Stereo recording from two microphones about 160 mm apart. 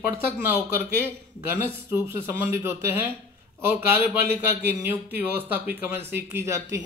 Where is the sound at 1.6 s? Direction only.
15° right (ahead or behind).